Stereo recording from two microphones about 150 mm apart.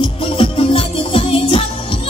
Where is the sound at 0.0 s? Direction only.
40° left (ahead or behind).